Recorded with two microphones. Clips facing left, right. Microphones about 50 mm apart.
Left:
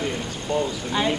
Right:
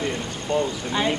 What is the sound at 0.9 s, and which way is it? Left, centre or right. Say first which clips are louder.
Speech: even; centre.